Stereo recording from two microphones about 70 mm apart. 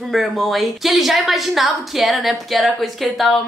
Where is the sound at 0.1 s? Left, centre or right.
Centre.